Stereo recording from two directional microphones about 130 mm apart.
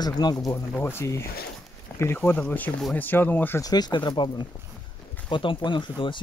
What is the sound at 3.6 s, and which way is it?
Speech, 30° left (ahead or behind).